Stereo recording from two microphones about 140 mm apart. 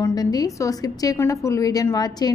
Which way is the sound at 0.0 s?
25° left (ahead or behind).